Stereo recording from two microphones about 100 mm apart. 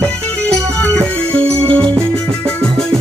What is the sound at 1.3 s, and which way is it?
Music, 10° left (ahead or behind).